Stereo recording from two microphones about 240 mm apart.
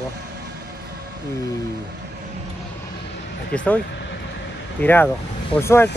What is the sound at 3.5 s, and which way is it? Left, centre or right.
Speech, centre.